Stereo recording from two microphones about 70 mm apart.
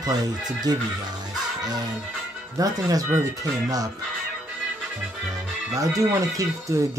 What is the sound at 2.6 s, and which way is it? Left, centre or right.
Speech, right.